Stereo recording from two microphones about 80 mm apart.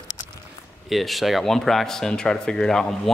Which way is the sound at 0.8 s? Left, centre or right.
Centre.